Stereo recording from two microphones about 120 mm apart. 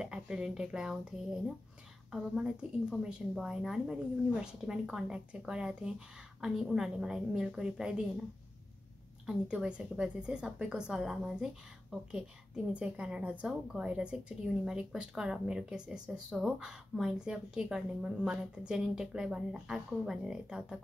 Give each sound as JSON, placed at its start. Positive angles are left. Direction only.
{"t": 0.0, "sound": "a woman's voice", "side_deg": -5}
{"t": 9.2, "sound": "a woman's voice", "side_deg": -5}